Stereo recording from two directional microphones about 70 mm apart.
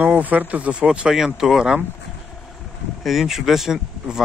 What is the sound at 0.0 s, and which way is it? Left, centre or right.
Speech, right.